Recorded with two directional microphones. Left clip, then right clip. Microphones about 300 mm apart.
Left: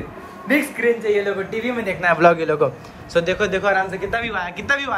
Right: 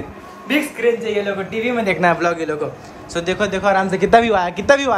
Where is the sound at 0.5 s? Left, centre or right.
Centre.